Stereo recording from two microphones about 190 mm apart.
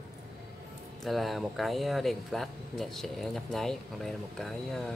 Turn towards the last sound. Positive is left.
turn(degrees=0)  # may be behind; listen again after turning